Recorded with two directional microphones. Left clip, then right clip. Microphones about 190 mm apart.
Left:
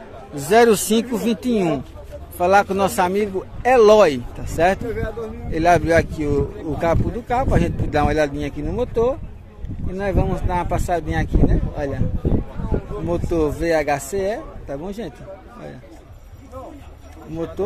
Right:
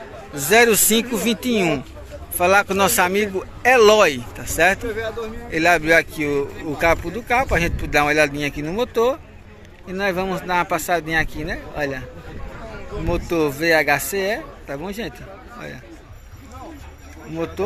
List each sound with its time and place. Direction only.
0.3 s speech: 20° left (ahead or behind)
4.8 s speech: 65° left (ahead or behind)
5.5 s speech: 20° left (ahead or behind)
13.1 s speech: 15° left (ahead or behind)